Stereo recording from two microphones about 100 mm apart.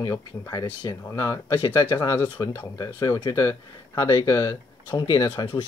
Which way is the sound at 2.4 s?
35° left (ahead or behind).